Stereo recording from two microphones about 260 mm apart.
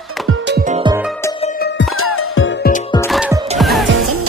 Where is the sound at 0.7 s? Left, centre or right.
Centre.